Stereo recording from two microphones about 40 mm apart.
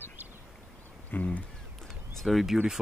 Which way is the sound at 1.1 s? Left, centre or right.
Left.